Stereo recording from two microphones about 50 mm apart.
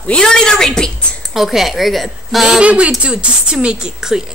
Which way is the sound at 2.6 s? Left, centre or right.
Right.